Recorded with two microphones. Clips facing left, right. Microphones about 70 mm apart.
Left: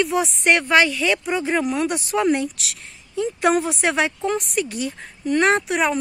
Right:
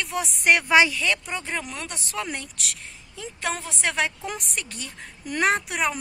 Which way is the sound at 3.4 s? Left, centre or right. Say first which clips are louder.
Left 9 dB; centre.